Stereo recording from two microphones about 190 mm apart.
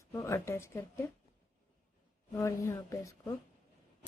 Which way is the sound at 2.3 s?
15° left (ahead or behind).